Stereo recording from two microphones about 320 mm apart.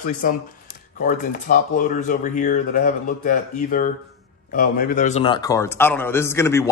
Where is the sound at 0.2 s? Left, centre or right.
Left.